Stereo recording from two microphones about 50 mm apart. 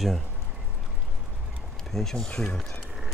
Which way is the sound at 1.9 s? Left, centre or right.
Centre.